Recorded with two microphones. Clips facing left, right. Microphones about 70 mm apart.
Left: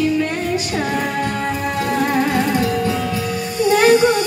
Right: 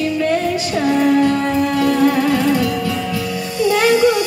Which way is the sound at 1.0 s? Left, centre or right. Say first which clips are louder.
Right 7 dB; left.